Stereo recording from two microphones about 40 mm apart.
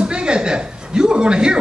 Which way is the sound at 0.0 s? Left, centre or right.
Right.